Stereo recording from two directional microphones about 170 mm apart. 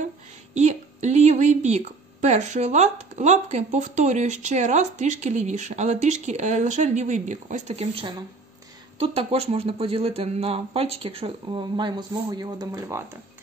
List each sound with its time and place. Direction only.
0.6 s a woman's voice: 45° right (ahead or behind); by 13.2 s 15° right (ahead or behind)